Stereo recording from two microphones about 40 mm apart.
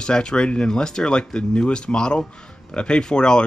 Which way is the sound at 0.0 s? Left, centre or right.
Left.